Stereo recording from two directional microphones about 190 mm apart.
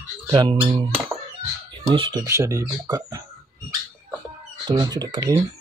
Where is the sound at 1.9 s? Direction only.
25° right (ahead or behind).